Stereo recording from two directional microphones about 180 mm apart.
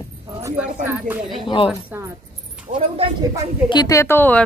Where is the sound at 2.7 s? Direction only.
40° right (ahead or behind).